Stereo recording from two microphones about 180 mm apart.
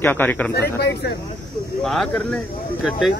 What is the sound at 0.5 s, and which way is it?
Speech, 65° left (ahead or behind).